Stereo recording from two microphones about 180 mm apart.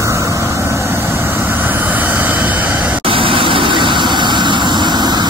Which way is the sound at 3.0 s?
30° right (ahead or behind).